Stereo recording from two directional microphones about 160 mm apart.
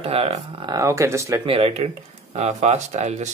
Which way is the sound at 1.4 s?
40° right (ahead or behind).